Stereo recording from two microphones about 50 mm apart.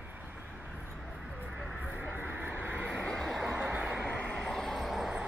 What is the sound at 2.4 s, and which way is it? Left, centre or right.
Vehicle, right.